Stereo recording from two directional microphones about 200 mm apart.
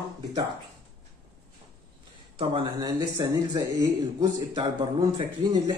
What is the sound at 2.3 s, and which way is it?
Speech, 25° right (ahead or behind).